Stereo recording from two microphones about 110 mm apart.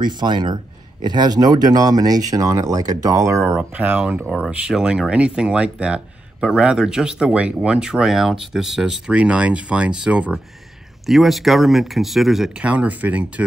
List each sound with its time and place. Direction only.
0.0 s speech: 45° right (ahead or behind); by 13.3 s 15° right (ahead or behind)